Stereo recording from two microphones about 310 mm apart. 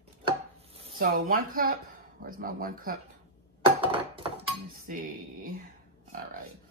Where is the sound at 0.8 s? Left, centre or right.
Right.